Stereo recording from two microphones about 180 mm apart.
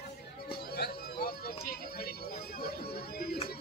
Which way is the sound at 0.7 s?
60° left (ahead or behind).